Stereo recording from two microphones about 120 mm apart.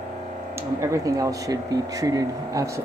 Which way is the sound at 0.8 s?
25° right (ahead or behind).